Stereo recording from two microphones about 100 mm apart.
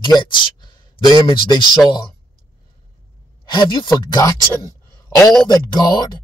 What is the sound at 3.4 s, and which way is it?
Speech, 45° left (ahead or behind).